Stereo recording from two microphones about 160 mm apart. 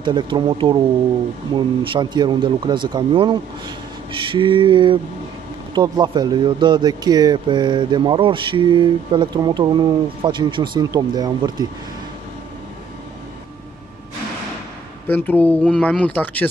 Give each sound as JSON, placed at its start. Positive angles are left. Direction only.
{"t": 0.0, "sound": "speech", "side_deg": -30}
{"t": 15.0, "sound": "speech", "side_deg": 10}